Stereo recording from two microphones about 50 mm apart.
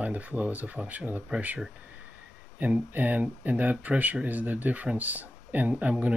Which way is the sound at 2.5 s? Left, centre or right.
Right.